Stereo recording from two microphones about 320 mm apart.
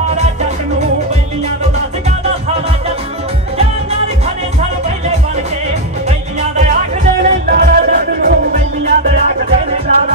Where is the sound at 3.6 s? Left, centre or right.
Centre.